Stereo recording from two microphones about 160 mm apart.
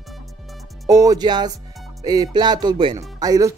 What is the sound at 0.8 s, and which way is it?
Speech, 20° right (ahead or behind).